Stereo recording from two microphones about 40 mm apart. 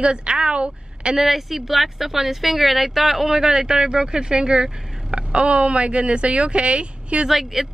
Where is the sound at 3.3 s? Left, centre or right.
Centre.